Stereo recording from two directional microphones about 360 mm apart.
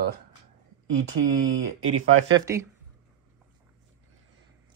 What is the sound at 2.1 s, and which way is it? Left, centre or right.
Speech, right.